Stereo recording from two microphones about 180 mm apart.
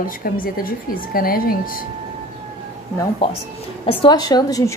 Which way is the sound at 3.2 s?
30° left (ahead or behind).